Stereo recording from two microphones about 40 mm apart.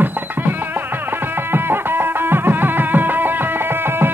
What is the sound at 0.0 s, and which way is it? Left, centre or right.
Music, right.